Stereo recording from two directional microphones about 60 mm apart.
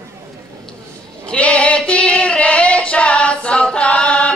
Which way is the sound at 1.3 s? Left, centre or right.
Centre.